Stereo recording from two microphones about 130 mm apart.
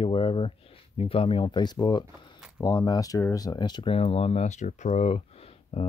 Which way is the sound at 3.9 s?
55° left (ahead or behind).